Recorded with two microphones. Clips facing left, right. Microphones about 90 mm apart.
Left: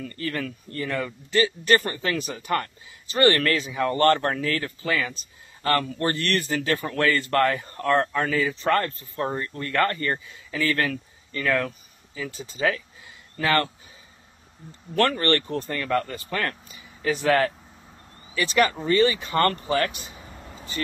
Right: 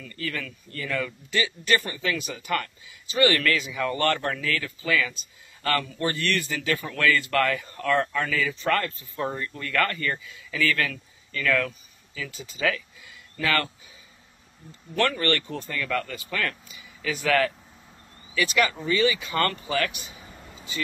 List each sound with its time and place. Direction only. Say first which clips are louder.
0.0 s speech: left 4 dB; 40° left (ahead or behind)
15.0 s speech: left 3 dB; 35° left (ahead or behind)